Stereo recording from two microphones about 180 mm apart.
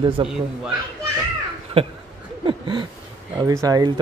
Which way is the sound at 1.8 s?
30° right (ahead or behind).